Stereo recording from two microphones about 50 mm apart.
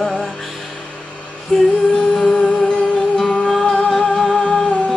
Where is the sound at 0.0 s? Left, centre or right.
Centre.